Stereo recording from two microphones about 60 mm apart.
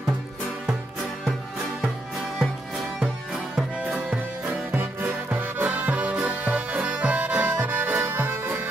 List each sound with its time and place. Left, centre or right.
4.1 s music: right; by 7.2 s centre
7.2 s music: right